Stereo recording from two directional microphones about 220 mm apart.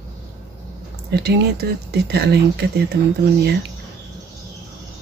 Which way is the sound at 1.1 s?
50° right (ahead or behind).